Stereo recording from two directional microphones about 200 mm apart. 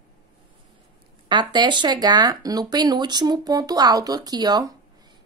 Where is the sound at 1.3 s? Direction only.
20° right (ahead or behind).